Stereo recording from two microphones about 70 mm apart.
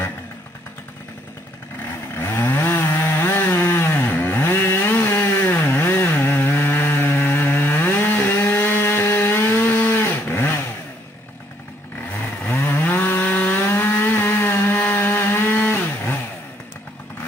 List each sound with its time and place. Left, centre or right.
2.1 s chainsaw: left
2.9 s a sound: left
3.2 s chainsaw: left
3.5 s chainsaw: left
8.4 s wood: left
12.4 s chainsaw: left
13.8 s chainsaw: left
14.8 s a sound: left